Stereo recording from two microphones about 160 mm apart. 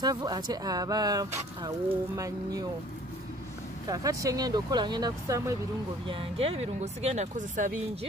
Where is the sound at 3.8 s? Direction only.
20° right (ahead or behind).